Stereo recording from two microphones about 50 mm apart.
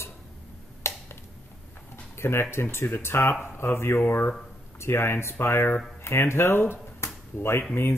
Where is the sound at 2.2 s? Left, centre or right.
Left.